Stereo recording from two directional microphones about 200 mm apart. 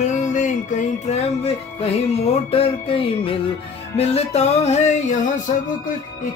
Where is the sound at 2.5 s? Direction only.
30° left (ahead or behind).